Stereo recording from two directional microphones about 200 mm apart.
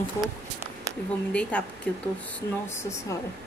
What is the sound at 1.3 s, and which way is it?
Speech, 5° left (ahead or behind).